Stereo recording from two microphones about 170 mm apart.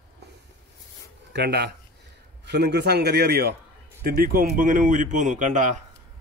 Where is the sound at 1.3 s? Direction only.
75° right (ahead or behind).